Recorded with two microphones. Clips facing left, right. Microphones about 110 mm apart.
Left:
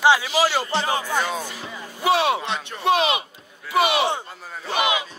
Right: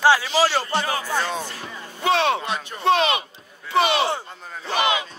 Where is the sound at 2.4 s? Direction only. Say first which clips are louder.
Even; 5° right (ahead or behind).